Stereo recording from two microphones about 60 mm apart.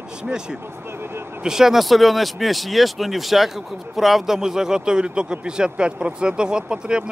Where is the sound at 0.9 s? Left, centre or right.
Right.